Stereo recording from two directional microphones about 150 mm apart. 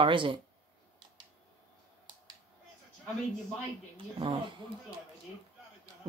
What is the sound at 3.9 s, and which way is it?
Speech, 30° right (ahead or behind).